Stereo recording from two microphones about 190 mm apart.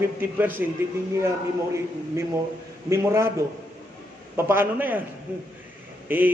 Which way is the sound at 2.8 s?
15° right (ahead or behind).